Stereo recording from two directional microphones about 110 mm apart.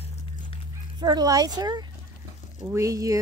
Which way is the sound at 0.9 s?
40° right (ahead or behind).